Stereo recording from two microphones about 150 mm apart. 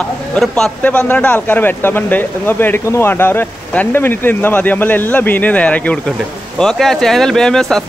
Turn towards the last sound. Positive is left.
turn(degrees=5)  # may be behind; listen again after turning